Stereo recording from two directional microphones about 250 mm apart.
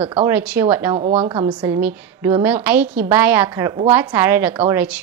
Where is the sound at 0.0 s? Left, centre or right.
Centre.